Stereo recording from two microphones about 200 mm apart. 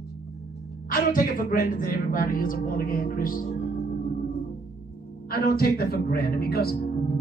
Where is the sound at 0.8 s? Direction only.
45° left (ahead or behind).